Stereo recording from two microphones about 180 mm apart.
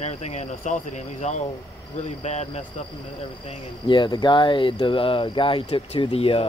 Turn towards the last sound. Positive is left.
turn(degrees=30)  # may be behind; listen again after turning